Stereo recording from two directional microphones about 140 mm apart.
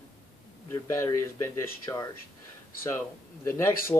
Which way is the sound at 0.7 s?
25° left (ahead or behind).